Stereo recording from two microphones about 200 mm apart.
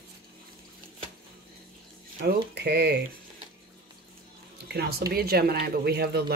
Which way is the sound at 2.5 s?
55° right (ahead or behind).